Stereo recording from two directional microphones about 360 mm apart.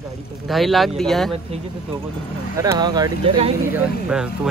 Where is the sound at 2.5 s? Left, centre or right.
Centre.